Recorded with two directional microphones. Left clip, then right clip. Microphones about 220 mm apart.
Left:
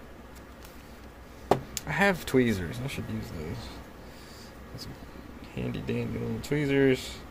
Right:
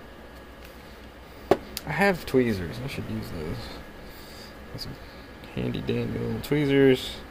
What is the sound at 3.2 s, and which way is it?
Speech, 10° right (ahead or behind).